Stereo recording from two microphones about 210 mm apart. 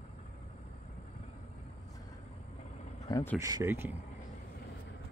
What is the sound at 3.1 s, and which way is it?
Speech, 15° left (ahead or behind).